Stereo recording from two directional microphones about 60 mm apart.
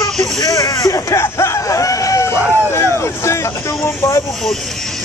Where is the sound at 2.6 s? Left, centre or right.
Left.